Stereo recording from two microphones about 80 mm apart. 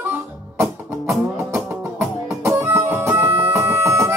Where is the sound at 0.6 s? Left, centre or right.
Right.